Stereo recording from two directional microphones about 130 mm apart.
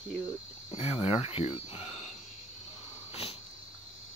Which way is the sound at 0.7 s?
50° left (ahead or behind).